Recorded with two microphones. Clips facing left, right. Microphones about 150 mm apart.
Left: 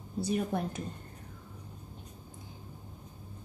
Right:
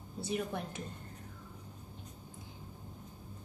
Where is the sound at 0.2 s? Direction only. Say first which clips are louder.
Left 5 dB; 40° left (ahead or behind).